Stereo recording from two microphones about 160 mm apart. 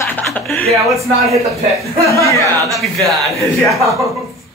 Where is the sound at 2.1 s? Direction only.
20° left (ahead or behind).